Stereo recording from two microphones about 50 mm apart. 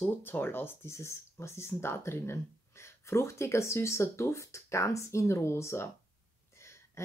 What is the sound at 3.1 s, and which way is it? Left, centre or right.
Speech, left.